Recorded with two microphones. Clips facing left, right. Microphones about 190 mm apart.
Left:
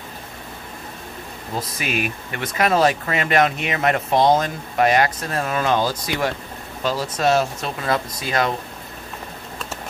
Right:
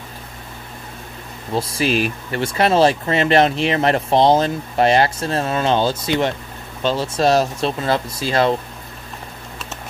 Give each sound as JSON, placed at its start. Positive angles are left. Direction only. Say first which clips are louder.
{"t": 1.5, "sound": "speech", "louder": "right 7 dB", "side_deg": -30}